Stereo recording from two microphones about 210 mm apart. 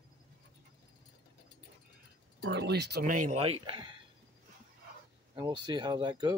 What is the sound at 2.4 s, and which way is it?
Speech, 55° right (ahead or behind).